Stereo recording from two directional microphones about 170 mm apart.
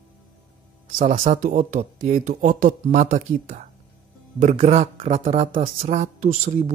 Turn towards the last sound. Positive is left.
turn(degrees=-45)  # may be behind; listen again after turning